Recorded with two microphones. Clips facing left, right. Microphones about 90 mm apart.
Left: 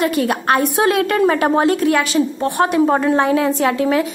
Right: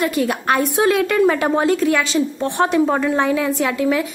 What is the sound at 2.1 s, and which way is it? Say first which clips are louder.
Speech: left 2 dB; 10° left (ahead or behind).